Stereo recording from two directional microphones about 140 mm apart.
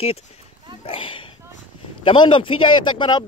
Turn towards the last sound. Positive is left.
turn(degrees=35)  # may be behind; listen again after turning